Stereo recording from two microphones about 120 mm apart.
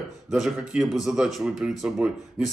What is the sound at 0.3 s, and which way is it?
Speech, 5° right (ahead or behind).